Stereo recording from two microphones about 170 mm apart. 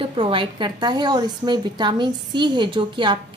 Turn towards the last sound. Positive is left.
turn(degrees=-30)  # may be behind; listen again after turning